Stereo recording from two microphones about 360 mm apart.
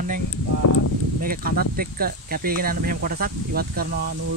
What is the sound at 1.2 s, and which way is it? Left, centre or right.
Speech, right.